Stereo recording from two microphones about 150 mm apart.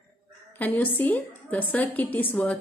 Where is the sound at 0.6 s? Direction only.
15° left (ahead or behind).